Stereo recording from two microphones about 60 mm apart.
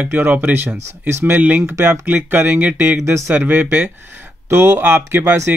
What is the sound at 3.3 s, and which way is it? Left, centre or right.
Speech, right.